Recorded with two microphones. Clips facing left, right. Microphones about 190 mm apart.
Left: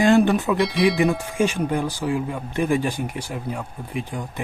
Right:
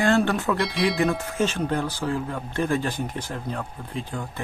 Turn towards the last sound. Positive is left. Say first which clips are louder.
# left 3 dB
turn(degrees=15)  # may be behind; listen again after turning